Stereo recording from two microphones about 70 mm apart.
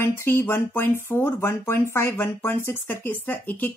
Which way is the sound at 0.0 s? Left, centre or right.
Left.